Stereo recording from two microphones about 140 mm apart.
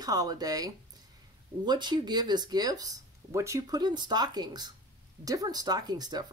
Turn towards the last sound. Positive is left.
turn(degrees=-30)  # may be behind; listen again after turning